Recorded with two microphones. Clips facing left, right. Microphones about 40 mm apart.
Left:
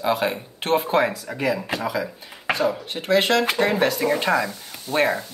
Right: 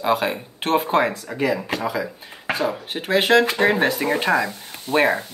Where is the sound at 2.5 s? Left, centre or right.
Right.